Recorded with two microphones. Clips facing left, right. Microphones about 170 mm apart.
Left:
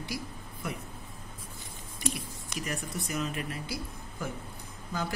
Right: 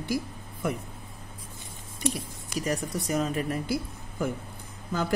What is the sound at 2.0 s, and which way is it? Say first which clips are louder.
Speech: right 4 dB; 30° right (ahead or behind).